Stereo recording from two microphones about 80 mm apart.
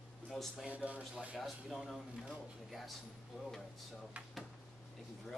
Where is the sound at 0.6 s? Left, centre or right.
Centre.